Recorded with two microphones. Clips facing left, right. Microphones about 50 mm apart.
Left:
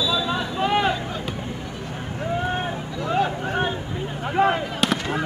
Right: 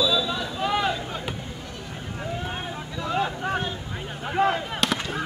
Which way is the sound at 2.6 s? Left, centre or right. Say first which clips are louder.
Left 4 dB; left.